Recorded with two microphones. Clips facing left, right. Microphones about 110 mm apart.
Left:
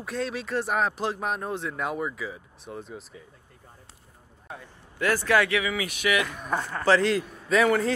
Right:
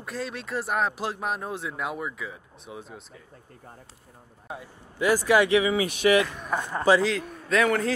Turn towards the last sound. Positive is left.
turn(degrees=0)  # may be behind; listen again after turning